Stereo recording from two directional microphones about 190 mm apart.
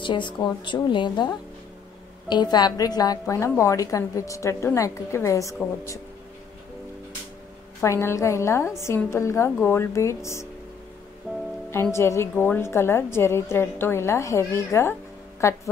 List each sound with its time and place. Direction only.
0.0 s a woman's voice: 25° left (ahead or behind)
7.8 s a woman's voice: 15° left (ahead or behind)
11.3 s music: centre (ahead or behind)
11.9 s a woman's voice: 15° left (ahead or behind)